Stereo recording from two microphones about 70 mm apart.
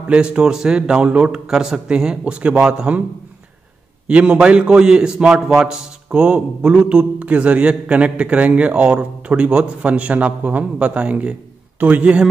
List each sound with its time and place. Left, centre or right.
0.1 s a man's voice: centre
4.1 s a man's voice: centre